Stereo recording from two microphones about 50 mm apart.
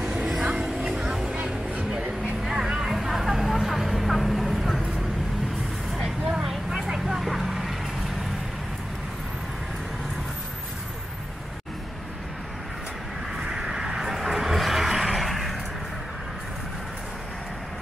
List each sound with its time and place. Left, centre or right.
0.5 s music: centre
2.4 s vehicle: centre
6.3 s vehicle: centre
13.4 s vehicle: centre